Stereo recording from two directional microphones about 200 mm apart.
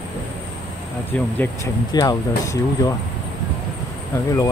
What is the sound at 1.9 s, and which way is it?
Speech, 20° left (ahead or behind).